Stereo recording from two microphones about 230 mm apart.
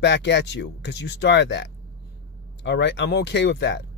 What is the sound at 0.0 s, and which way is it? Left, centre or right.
Speech, left.